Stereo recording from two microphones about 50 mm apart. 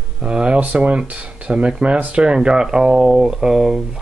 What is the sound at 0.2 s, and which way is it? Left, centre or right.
Speech, right.